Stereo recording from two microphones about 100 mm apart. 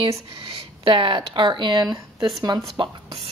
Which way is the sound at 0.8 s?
60° right (ahead or behind).